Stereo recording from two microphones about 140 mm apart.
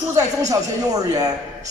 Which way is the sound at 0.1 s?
25° right (ahead or behind).